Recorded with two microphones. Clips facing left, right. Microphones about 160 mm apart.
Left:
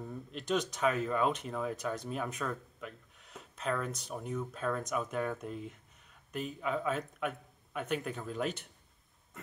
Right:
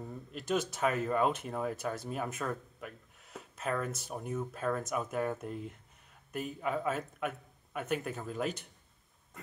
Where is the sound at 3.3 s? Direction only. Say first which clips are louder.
Even; 5° right (ahead or behind).